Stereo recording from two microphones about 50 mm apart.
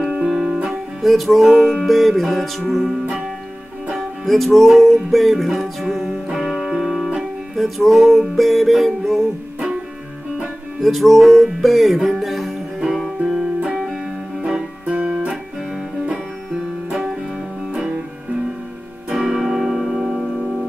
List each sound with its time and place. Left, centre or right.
0.2 s music: centre
0.7 s music: centre
3.9 s music: centre
10.8 s music: centre
13.2 s music: centre
14.9 s music: right
19.1 s music: centre